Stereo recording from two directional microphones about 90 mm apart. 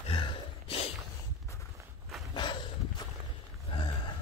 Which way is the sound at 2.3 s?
60° left (ahead or behind).